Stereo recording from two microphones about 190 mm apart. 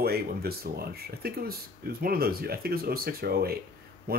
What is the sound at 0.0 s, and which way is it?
Speech, 55° right (ahead or behind).